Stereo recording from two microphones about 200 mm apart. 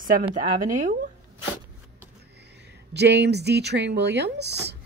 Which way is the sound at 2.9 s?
55° right (ahead or behind).